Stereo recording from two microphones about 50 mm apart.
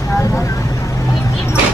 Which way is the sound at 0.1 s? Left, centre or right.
Left.